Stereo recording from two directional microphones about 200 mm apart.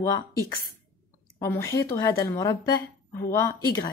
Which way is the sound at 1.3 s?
15° left (ahead or behind).